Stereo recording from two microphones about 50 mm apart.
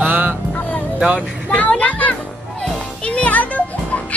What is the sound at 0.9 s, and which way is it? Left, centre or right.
Speech, right.